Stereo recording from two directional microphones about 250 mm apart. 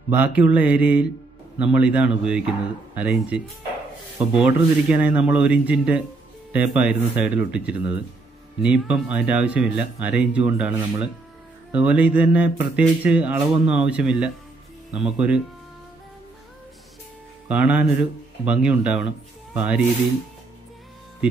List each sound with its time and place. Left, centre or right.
0.1 s speech: centre
17.5 s speech: centre